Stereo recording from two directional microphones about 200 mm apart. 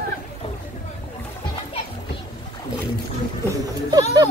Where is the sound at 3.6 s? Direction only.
20° right (ahead or behind).